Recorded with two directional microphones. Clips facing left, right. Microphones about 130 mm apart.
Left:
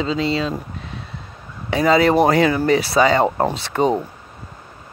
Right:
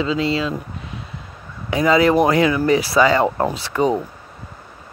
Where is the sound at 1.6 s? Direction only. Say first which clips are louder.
Even; 30° left (ahead or behind).